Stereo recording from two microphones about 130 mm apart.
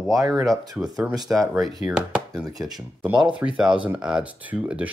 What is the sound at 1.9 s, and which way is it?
Speech, 5° right (ahead or behind).